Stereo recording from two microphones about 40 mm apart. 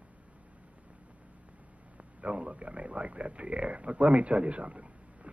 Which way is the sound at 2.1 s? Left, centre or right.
Right.